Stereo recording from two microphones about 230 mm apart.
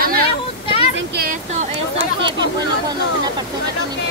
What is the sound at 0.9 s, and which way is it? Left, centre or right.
Speech, right.